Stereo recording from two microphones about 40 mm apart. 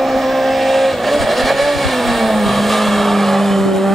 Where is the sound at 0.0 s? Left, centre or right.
Centre.